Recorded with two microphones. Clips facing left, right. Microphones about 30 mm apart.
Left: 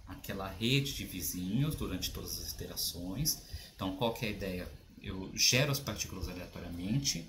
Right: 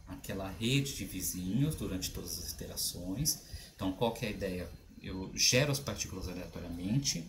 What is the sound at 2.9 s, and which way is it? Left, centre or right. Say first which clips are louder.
Speech: right 1 dB; left.